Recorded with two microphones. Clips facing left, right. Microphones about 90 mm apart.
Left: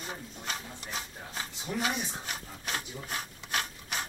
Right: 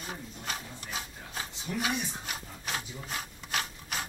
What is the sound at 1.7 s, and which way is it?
Speech, 25° left (ahead or behind).